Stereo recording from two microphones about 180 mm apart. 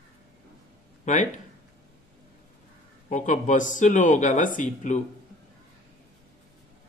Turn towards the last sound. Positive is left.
turn(degrees=45)  # may be behind; listen again after turning